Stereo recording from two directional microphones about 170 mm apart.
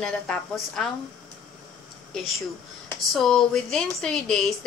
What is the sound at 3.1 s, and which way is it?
A woman's voice, centre (ahead or behind).